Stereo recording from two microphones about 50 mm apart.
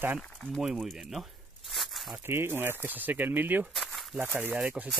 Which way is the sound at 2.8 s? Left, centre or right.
Right.